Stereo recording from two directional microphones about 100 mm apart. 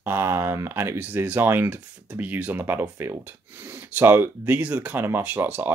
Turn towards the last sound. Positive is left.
turn(degrees=-20)  # may be behind; listen again after turning